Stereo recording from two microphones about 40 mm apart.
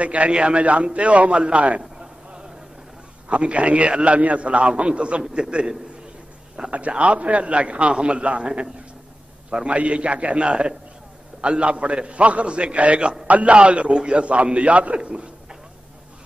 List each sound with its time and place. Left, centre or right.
0.0 s a man's voice: right
0.3 s a man's voice: right
1.8 s a sound: right
3.3 s a man's voice: right
6.6 s a sound: right
7.0 s a man's voice: right